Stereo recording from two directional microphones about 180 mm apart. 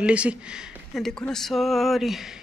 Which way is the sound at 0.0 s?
5° right (ahead or behind).